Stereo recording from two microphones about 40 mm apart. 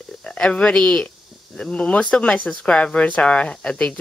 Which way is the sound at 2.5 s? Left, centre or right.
Centre.